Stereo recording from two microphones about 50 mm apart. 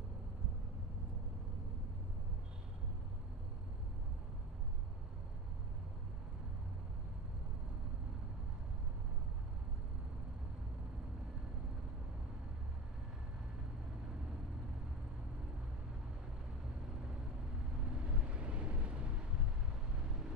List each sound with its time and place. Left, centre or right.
18.0 s vehicle: right